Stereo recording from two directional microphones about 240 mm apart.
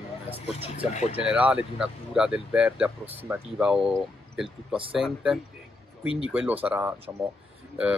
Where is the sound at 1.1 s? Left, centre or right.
Centre.